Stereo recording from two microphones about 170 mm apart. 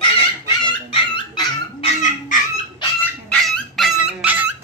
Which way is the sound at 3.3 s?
Centre (ahead or behind).